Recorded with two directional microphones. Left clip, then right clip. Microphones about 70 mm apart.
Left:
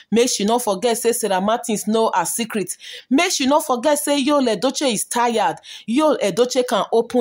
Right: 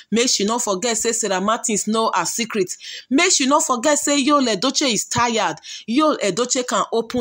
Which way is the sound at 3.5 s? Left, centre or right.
Left.